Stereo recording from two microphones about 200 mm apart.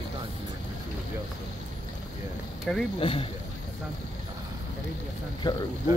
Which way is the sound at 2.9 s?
25° left (ahead or behind).